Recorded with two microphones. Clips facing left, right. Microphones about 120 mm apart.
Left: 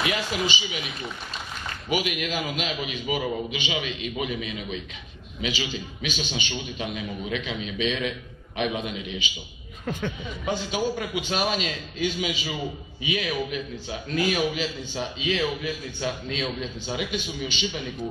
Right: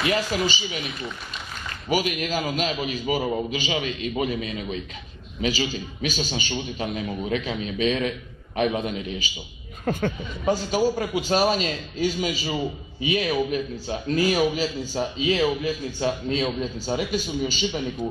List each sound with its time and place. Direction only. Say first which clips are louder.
0.3 s a man's voice: right 2 dB; 35° right (ahead or behind)
1.9 s a man's voice: right 3 dB; 40° right (ahead or behind)